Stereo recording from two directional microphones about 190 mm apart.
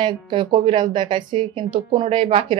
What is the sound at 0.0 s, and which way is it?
Speech, 25° right (ahead or behind).